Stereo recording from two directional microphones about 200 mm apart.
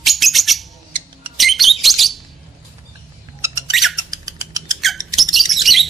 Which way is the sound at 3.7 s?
Centre (ahead or behind).